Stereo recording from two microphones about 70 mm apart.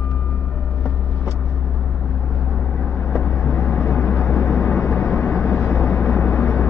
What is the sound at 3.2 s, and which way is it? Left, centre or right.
Vehicle, centre.